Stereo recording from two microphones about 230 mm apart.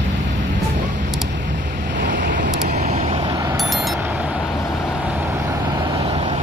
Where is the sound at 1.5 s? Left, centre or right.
Right.